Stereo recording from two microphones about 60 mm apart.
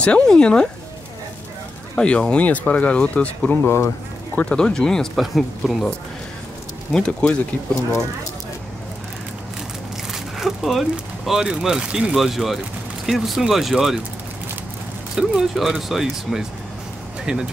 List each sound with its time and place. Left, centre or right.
0.0 s speech: centre
2.0 s speech: centre
3.6 s speech: left
4.4 s speech: centre
5.1 s speech: centre
6.9 s speech: centre
10.1 s speech: centre
15.1 s speech: centre